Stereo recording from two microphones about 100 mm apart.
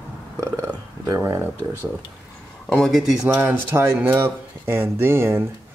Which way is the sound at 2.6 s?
Centre (ahead or behind).